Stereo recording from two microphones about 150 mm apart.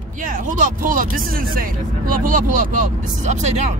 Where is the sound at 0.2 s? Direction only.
60° right (ahead or behind).